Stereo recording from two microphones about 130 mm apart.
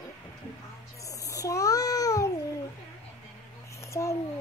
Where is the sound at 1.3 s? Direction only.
25° left (ahead or behind).